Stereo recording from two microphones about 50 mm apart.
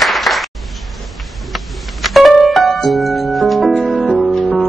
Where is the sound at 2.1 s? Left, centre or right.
Centre.